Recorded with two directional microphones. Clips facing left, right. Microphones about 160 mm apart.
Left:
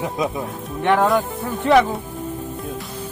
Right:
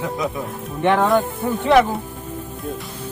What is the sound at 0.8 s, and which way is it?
Speech, centre (ahead or behind).